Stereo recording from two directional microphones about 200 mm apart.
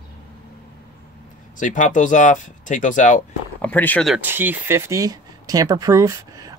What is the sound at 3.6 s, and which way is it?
Speech, 10° left (ahead or behind).